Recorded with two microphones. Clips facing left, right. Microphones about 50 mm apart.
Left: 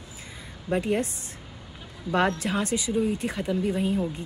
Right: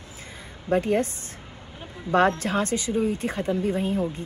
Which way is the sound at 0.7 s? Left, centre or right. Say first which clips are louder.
Right 3 dB; right.